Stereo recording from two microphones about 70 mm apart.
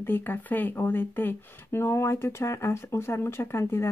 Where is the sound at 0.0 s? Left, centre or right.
Left.